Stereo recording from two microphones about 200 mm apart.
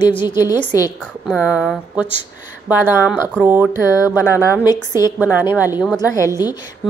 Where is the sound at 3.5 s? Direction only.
10° right (ahead or behind).